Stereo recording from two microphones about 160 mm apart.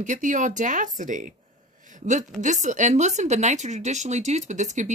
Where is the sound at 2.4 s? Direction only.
50° right (ahead or behind).